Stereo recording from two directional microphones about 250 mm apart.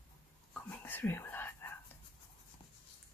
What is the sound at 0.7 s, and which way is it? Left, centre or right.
Whispering, centre.